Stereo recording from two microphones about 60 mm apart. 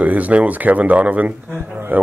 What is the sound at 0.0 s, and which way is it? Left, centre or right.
Speech, right.